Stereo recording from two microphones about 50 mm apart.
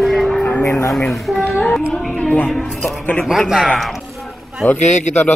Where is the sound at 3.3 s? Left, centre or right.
Centre.